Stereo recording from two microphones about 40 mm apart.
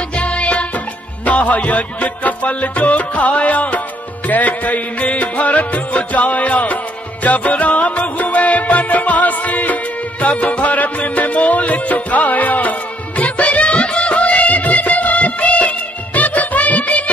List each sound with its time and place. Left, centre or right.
0.2 s music: left